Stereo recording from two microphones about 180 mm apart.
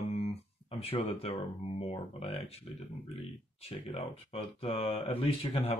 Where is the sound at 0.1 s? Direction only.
35° left (ahead or behind).